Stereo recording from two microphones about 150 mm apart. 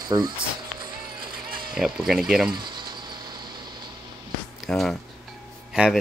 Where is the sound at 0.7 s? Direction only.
30° right (ahead or behind).